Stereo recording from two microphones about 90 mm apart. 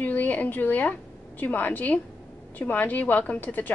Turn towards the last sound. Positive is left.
turn(degrees=20)  # may be behind; listen again after turning